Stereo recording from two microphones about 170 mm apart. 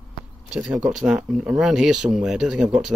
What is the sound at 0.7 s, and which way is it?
Speech, 5° right (ahead or behind).